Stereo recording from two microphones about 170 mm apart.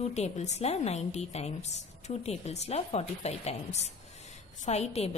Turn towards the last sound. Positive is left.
turn(degrees=40)  # may be behind; listen again after turning